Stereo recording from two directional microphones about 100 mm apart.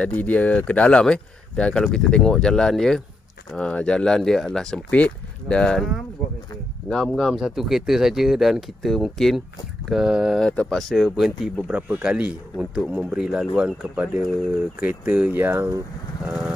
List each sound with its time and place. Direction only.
0.0 s speech: 15° left (ahead or behind)
6.9 s speech: 5° left (ahead or behind)
10.4 s speech: 10° left (ahead or behind); by 15.4 s 15° right (ahead or behind)
15.4 s speech: 25° right (ahead or behind)